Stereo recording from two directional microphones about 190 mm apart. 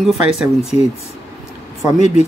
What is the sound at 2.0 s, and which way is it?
Speech, 35° left (ahead or behind).